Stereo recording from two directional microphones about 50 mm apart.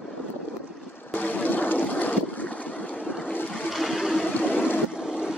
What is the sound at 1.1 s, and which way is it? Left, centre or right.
Boat, left.